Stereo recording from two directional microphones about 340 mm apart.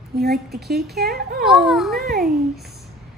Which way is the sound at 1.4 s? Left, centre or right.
Centre.